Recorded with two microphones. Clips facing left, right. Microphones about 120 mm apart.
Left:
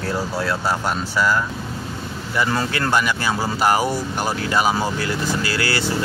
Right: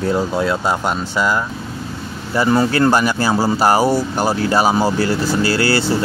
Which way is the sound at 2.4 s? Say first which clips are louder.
Right 7 dB; 30° right (ahead or behind).